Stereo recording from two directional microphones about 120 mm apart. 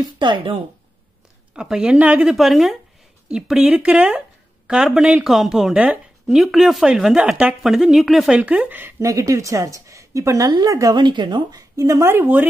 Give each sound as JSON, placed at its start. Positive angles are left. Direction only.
{"t": 0.2, "sound": "speech", "side_deg": -45}
{"t": 1.5, "sound": "a woman's voice", "side_deg": -5}
{"t": 8.4, "sound": "speech", "side_deg": -10}
{"t": 9.0, "sound": "a woman's voice", "side_deg": -25}